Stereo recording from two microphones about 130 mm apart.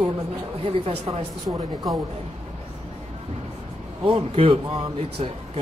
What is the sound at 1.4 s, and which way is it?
Speech, 30° right (ahead or behind).